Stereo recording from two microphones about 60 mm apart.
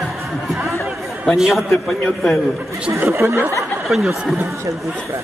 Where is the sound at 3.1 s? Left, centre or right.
Right.